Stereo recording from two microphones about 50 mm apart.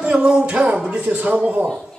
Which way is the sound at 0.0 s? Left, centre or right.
Centre.